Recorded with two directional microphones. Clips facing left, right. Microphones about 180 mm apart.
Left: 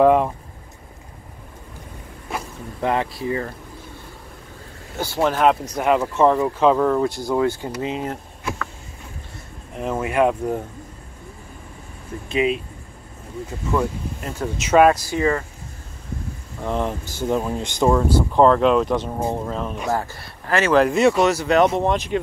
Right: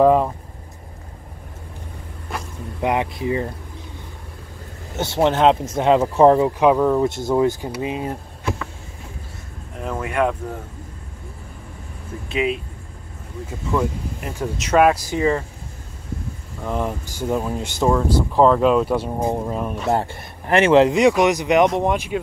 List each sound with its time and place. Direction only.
0.0 s a sound: centre (ahead or behind)
2.8 s speech: 15° right (ahead or behind)
4.9 s speech: 25° right (ahead or behind)
6.4 s speech: 15° right (ahead or behind)
9.8 s speech: 5° left (ahead or behind)
12.3 s speech: centre (ahead or behind)
14.2 s speech: 15° right (ahead or behind)
14.6 s speech: centre (ahead or behind)
15.0 s speech: 20° right (ahead or behind)
16.6 s speech: 5° right (ahead or behind)
19.9 s speech: 25° right (ahead or behind)